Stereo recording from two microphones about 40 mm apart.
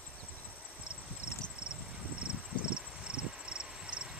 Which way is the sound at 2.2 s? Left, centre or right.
Right.